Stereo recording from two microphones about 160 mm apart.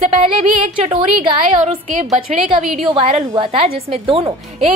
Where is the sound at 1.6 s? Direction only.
40° right (ahead or behind).